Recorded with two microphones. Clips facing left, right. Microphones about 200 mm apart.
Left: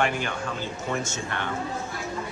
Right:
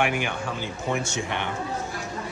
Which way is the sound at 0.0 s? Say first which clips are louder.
Right 1 dB; 10° right (ahead or behind).